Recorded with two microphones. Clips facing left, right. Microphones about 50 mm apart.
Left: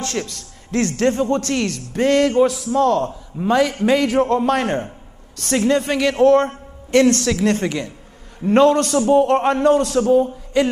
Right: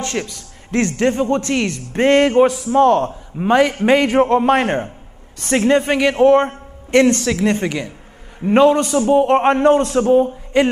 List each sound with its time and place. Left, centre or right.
0.0 s a man's voice: right
2.0 s a man's voice: right
7.2 s speech: centre
9.4 s a man's voice: right